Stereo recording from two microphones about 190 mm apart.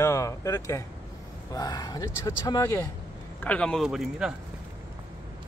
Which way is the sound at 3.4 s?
5° left (ahead or behind).